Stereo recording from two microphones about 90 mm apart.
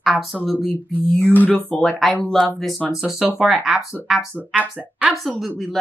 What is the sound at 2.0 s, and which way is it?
Speech, 5° left (ahead or behind).